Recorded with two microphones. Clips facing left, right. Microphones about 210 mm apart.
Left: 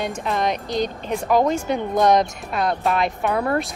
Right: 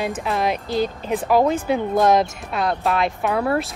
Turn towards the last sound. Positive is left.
turn(degrees=0)  # may be behind; listen again after turning